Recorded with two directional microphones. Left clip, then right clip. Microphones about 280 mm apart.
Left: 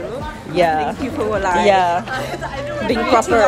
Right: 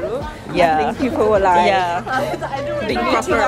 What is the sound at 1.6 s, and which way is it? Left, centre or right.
Speech, centre.